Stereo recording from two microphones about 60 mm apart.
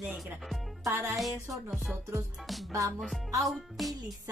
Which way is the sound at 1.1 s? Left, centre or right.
Centre.